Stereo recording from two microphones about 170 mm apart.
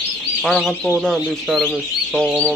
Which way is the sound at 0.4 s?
Centre (ahead or behind).